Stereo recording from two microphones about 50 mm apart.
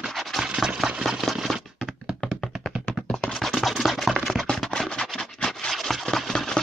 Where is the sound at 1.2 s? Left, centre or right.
Centre.